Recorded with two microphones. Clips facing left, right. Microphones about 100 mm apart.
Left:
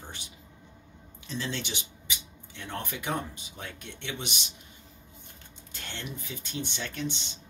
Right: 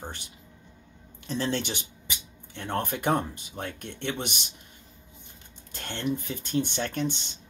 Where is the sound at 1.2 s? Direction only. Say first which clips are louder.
Right 6 dB; 50° right (ahead or behind).